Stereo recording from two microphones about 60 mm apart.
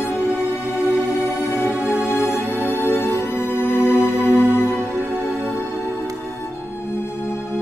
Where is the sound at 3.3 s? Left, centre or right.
Right.